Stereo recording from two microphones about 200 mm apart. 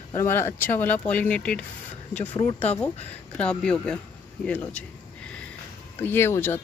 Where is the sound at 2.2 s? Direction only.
35° left (ahead or behind).